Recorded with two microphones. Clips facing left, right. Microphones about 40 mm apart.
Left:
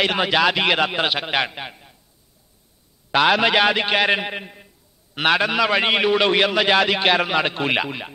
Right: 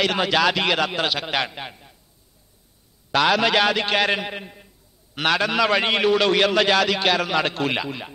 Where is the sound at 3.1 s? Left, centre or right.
Centre.